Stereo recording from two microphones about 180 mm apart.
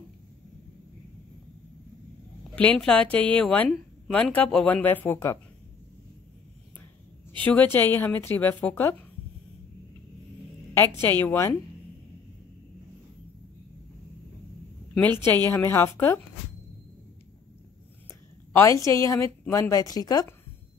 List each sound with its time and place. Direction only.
2.5 s speech: 5° left (ahead or behind)
7.4 s speech: 10° left (ahead or behind)
10.7 s speech: 15° left (ahead or behind)
15.4 s speech: 15° left (ahead or behind)
18.5 s speech: 15° left (ahead or behind)